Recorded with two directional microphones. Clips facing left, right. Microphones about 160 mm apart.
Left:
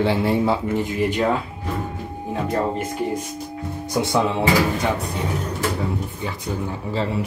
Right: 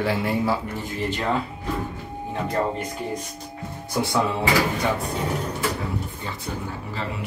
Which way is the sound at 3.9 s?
20° left (ahead or behind).